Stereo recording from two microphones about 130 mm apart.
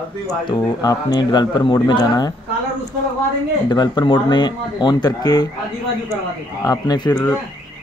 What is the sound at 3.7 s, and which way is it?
Speech, 35° left (ahead or behind).